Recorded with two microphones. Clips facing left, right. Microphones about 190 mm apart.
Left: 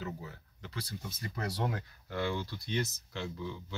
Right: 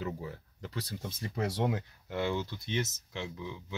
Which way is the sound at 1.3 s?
20° right (ahead or behind).